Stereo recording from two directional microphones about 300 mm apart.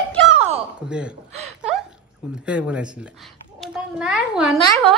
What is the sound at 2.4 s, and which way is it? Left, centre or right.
Speech, centre.